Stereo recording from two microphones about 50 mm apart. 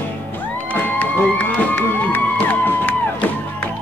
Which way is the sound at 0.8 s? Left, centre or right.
Left.